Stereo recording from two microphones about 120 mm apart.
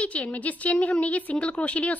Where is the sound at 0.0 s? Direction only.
10° left (ahead or behind).